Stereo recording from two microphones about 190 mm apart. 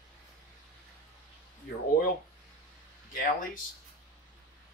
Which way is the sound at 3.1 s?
45° left (ahead or behind).